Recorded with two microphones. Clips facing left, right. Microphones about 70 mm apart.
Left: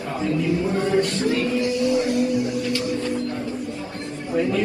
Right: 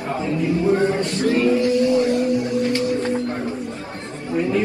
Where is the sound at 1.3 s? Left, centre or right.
Right.